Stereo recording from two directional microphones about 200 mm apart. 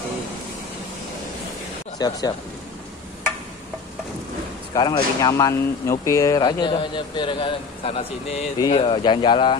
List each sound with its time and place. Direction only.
2.0 s speech: 20° left (ahead or behind)
4.7 s speech: 20° left (ahead or behind)